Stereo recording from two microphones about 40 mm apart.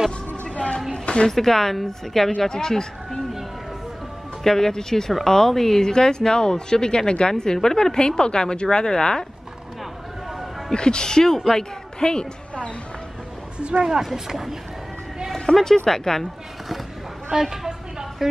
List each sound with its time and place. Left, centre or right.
0.9 s music: left
1.3 s speech: centre
4.4 s speech: centre
10.7 s speech: left
11.3 s a woman's voice: centre
12.0 s a woman's voice: left
14.0 s speech: centre
15.3 s speech: centre
17.4 s a woman's voice: centre